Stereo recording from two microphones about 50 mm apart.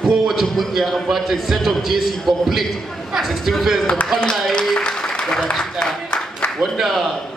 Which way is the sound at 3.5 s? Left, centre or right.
Centre.